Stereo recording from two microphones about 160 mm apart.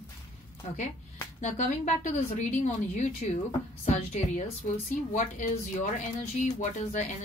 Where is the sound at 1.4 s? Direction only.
50° left (ahead or behind).